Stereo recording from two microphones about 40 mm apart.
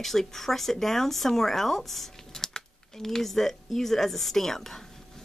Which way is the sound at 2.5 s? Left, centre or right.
Centre.